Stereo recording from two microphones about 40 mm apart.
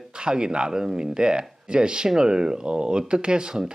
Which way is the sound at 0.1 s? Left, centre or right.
Right.